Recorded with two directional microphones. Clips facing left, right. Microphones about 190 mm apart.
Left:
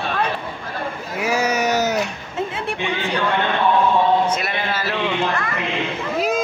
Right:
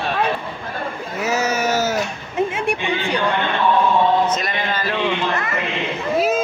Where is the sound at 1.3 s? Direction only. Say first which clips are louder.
Even; 15° left (ahead or behind).